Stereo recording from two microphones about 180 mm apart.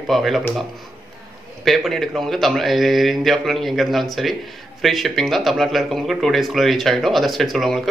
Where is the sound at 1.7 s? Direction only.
Centre (ahead or behind).